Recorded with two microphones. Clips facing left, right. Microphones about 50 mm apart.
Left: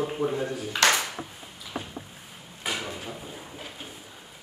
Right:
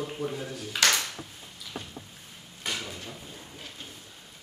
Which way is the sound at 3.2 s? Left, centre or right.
Centre.